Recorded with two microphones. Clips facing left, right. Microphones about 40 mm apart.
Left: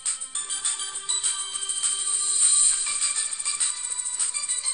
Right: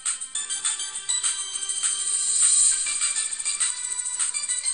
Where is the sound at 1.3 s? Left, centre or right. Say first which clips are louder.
Left 1 dB; left.